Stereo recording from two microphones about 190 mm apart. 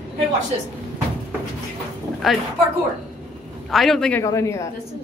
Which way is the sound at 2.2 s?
Centre (ahead or behind).